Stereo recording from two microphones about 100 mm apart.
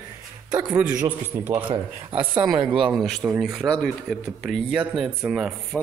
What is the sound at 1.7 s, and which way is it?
Speech, 65° right (ahead or behind).